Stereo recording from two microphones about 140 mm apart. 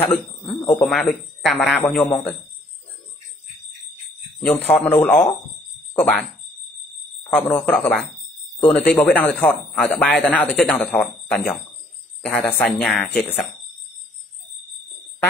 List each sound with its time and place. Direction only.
0.0 s a man's voice: 10° left (ahead or behind)
2.0 s speech: 15° left (ahead or behind)
4.5 s a man's voice: 10° left (ahead or behind)
7.3 s a man's voice: 15° left (ahead or behind)